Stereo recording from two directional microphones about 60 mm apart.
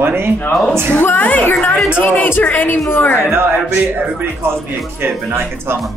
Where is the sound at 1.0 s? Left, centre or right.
Left.